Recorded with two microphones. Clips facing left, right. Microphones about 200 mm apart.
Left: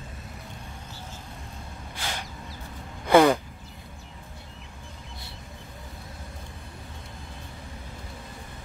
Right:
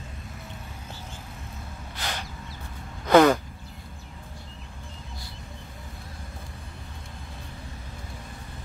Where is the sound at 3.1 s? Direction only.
10° left (ahead or behind).